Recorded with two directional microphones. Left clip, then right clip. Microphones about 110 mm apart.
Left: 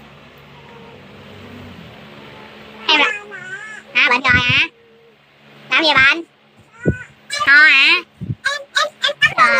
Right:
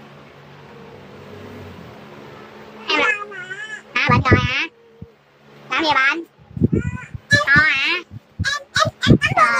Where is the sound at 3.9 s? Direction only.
20° left (ahead or behind).